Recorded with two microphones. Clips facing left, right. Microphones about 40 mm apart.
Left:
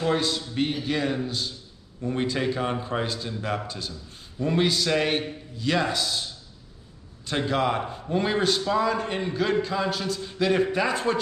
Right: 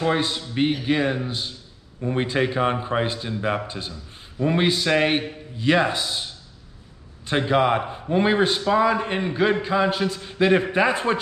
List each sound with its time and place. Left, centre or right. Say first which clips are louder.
0.0 s a man's voice: right 2 dB; right